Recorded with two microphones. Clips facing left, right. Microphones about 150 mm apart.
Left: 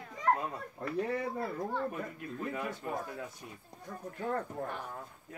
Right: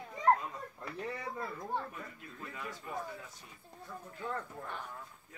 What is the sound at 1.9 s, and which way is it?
Speech, 55° left (ahead or behind).